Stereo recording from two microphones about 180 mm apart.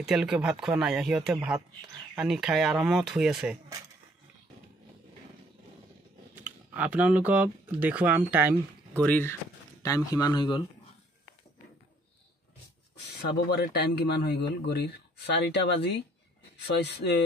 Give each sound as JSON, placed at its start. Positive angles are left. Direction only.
{"t": 0.0, "sound": "speech", "side_deg": -5}
{"t": 6.4, "sound": "speech", "side_deg": -10}
{"t": 8.9, "sound": "speech", "side_deg": 10}
{"t": 13.2, "sound": "speech", "side_deg": 65}